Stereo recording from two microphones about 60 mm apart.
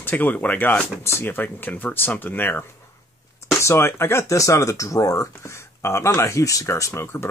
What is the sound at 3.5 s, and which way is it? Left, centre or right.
Speech, left.